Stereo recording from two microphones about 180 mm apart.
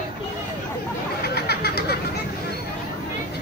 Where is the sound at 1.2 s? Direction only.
60° left (ahead or behind).